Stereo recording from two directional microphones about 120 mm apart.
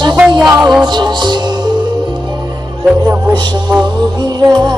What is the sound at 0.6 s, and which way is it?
Music, 5° right (ahead or behind).